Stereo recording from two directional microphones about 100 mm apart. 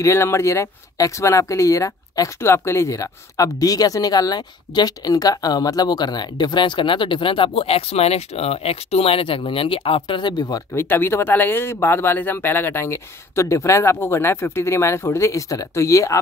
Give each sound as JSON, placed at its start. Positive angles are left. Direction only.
{"t": 0.0, "sound": "speech", "side_deg": 30}
{"t": 10.7, "sound": "speech", "side_deg": 20}